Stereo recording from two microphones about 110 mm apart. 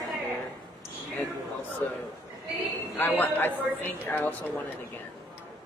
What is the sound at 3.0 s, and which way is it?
A man's voice, 20° left (ahead or behind).